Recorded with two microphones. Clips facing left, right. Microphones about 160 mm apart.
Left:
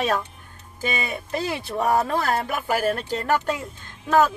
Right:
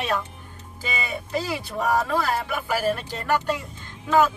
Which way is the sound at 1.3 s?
50° left (ahead or behind).